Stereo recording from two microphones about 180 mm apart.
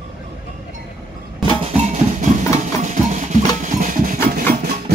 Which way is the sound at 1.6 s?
40° right (ahead or behind).